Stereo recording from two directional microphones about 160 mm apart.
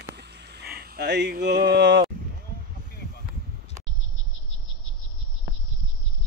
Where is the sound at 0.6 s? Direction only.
85° right.